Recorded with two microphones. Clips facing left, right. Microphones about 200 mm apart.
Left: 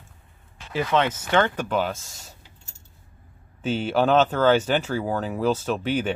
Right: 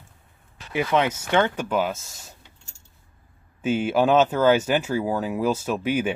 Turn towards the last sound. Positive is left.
turn(degrees=-10)  # may be behind; listen again after turning